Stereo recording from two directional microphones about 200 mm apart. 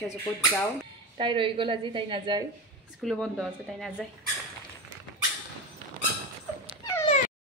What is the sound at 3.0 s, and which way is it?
Speech, centre (ahead or behind).